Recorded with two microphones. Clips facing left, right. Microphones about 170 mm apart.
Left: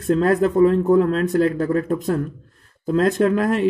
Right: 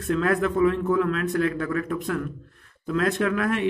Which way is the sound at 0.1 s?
35° left (ahead or behind).